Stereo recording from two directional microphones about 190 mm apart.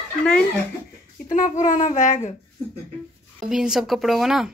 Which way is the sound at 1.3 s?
45° left (ahead or behind).